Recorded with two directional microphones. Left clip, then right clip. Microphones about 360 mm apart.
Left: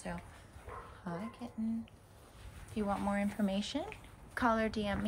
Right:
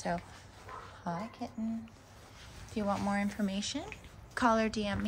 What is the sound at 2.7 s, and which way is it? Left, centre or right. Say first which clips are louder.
A woman's voice: right 2 dB; centre.